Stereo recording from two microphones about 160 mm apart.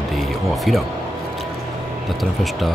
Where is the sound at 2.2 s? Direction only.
Centre (ahead or behind).